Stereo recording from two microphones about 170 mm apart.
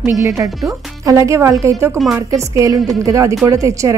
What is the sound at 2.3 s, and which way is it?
Speech, 20° right (ahead or behind).